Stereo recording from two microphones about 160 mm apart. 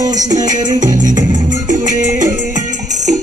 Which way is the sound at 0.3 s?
25° right (ahead or behind).